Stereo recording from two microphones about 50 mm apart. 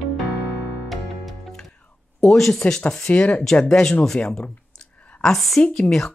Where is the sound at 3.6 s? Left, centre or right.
Centre.